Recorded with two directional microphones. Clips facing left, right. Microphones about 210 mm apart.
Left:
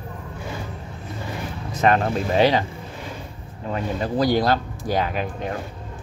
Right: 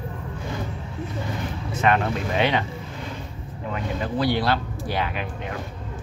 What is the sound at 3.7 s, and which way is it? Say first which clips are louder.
Speech: left 3 dB; 40° left (ahead or behind).